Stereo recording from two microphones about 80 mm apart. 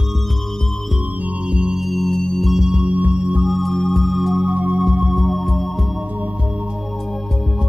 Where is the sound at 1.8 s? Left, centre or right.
Centre.